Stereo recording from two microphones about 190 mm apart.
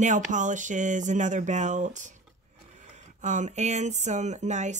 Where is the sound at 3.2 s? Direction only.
40° right (ahead or behind).